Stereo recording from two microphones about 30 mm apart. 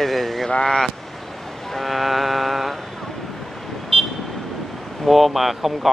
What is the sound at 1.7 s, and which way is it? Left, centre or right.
Music, centre.